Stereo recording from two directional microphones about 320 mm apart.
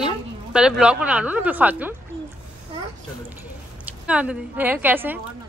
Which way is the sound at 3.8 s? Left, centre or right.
Centre.